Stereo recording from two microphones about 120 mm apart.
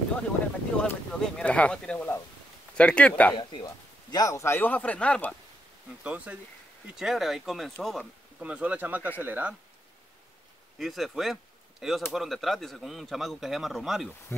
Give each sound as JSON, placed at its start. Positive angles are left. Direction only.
{"t": 0.7, "sound": "speech", "side_deg": 5}
{"t": 3.3, "sound": "a man's voice", "side_deg": 35}
{"t": 6.0, "sound": "a man's voice", "side_deg": -10}
{"t": 8.4, "sound": "speech", "side_deg": -10}
{"t": 10.8, "sound": "a man's voice", "side_deg": 0}